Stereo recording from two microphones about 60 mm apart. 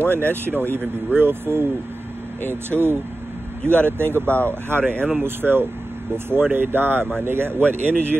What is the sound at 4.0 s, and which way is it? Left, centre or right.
Speech, right.